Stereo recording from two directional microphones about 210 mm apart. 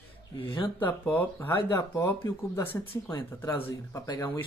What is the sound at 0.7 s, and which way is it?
Speech, 10° left (ahead or behind).